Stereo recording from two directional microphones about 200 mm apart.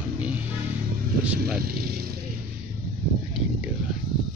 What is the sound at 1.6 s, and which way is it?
Speech, 50° right (ahead or behind).